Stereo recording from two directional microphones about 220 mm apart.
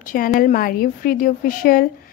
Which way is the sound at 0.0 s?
40° left (ahead or behind).